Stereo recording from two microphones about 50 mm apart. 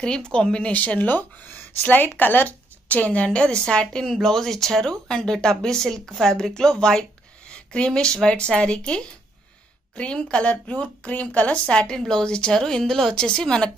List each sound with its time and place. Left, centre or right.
0.3 s a woman's voice: centre
3.3 s a woman's voice: centre
11.6 s speech: centre